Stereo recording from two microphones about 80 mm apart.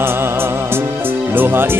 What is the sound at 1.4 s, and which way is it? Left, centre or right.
Music, right.